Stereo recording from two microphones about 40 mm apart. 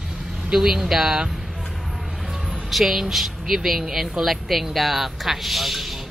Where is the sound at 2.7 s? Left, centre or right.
Centre.